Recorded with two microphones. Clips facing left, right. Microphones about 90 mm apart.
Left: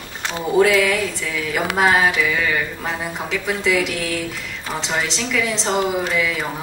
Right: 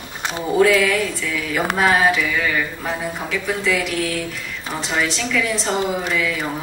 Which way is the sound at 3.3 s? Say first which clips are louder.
Left 1 dB; 20° left (ahead or behind).